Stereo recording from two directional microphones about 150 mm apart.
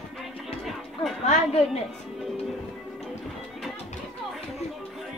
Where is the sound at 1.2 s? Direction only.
45° left (ahead or behind).